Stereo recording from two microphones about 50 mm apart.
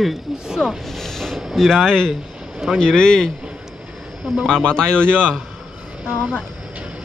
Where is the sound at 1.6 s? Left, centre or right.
Centre.